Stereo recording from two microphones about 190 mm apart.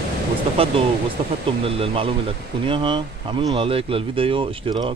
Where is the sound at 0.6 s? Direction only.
30° right (ahead or behind).